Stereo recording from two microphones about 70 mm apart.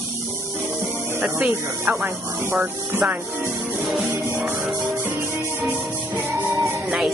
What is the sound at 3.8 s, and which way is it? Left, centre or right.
Music, centre.